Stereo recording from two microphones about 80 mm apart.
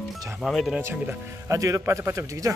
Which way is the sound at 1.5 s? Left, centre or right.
Right.